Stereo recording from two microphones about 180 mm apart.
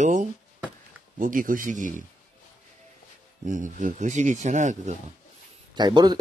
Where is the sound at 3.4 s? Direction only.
45° right (ahead or behind).